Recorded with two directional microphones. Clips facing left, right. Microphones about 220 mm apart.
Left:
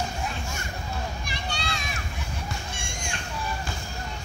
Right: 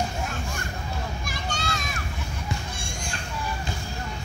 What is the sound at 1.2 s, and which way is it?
Children playing, 45° right (ahead or behind).